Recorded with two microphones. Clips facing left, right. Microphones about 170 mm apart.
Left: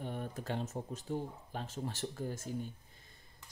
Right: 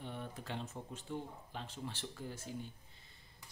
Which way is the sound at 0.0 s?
45° left (ahead or behind).